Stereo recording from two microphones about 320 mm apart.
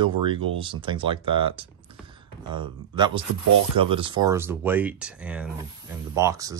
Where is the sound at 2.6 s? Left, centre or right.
Centre.